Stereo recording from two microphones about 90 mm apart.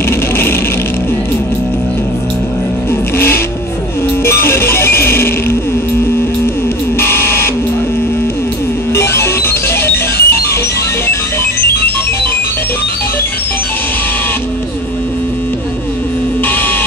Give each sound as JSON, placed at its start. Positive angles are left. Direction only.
{"t": 4.2, "sound": "music", "side_deg": 30}
{"t": 7.0, "sound": "a sound", "side_deg": 25}
{"t": 8.9, "sound": "music", "side_deg": 30}